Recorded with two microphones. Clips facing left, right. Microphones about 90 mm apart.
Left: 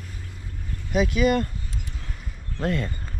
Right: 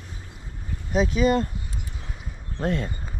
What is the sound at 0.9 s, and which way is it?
Speech, 35° right (ahead or behind).